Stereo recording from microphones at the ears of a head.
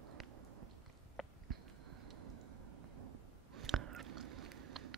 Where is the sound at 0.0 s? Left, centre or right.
Right.